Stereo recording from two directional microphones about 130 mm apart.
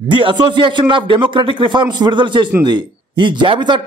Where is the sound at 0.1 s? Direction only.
40° right (ahead or behind).